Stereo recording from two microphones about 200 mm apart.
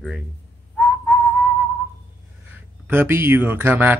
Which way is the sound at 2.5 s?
10° right (ahead or behind).